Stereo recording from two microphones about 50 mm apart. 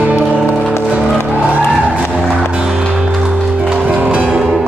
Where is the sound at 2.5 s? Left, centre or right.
Centre.